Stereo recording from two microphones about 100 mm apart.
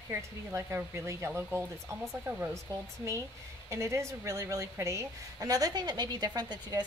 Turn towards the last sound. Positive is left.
turn(degrees=-45)  # may be behind; listen again after turning